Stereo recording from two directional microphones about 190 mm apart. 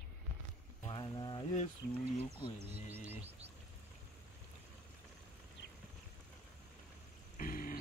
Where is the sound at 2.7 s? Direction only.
10° right (ahead or behind).